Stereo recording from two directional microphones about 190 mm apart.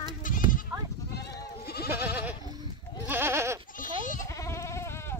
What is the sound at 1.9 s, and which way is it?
Goat, 10° right (ahead or behind).